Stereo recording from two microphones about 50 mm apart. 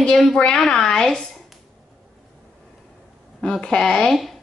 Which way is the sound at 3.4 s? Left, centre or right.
Centre.